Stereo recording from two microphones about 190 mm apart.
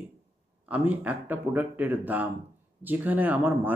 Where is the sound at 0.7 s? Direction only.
10° right (ahead or behind).